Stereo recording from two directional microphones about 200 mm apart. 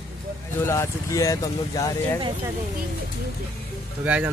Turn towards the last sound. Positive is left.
turn(degrees=-10)  # may be behind; listen again after turning